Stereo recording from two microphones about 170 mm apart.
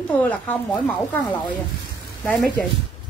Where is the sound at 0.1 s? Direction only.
10° left (ahead or behind).